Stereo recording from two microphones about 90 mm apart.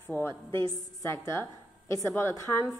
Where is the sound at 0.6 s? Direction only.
45° left (ahead or behind).